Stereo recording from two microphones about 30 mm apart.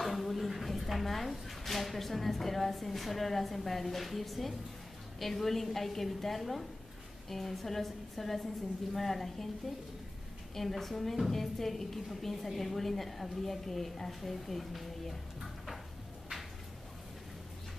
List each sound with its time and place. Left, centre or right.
0.0 s a woman's voice: centre
10.5 s a woman's voice: centre